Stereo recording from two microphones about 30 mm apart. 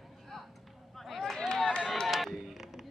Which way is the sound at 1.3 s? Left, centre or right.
Centre.